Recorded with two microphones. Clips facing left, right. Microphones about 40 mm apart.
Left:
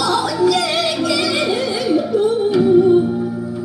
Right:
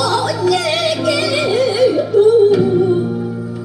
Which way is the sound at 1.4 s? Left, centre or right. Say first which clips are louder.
Right 5 dB; left.